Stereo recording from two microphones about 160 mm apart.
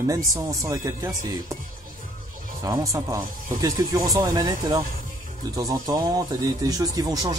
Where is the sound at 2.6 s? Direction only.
20° right (ahead or behind).